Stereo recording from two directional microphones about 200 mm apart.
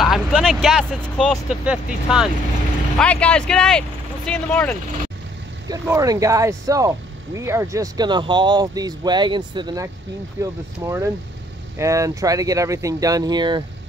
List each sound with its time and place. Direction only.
0.0 s speech: centre (ahead or behind)
3.0 s speech: 5° left (ahead or behind)
5.7 s speech: 15° right (ahead or behind)